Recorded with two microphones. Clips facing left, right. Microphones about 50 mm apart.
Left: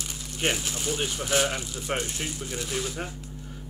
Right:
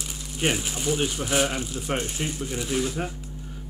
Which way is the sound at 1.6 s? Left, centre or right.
Centre.